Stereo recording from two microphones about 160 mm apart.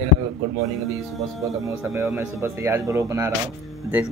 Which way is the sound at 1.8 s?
15° right (ahead or behind).